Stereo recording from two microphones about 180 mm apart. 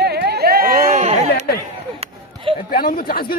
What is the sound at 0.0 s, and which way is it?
Chatter, 60° right (ahead or behind).